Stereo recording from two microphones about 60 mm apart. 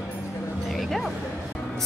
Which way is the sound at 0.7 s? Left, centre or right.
Centre.